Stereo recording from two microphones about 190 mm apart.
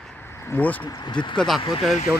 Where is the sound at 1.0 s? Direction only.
25° left (ahead or behind).